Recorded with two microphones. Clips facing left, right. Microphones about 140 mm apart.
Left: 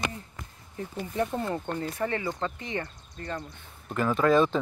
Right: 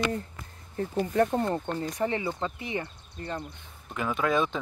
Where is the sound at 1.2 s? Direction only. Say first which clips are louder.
Right 4 dB; 40° right (ahead or behind).